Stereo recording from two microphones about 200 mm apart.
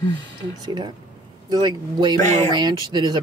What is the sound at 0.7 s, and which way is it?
Speech, 20° right (ahead or behind).